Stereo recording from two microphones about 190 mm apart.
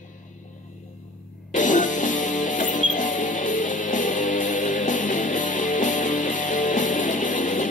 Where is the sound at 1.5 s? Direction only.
40° left (ahead or behind).